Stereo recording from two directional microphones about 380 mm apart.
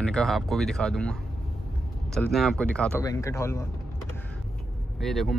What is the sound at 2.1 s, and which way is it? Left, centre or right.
A man's voice, centre.